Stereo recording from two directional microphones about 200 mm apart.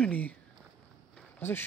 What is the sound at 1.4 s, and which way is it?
Speech, 10° left (ahead or behind).